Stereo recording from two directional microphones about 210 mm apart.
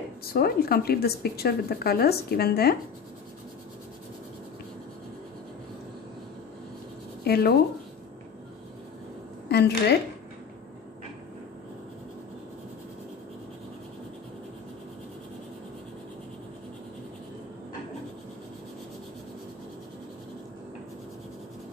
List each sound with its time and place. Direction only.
0.3 s a woman's voice: 45° left (ahead or behind)
7.2 s a woman's voice: 50° left (ahead or behind)
9.5 s a woman's voice: 50° left (ahead or behind)